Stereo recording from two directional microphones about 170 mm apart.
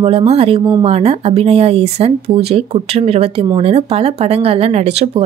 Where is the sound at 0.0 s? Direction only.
35° right (ahead or behind).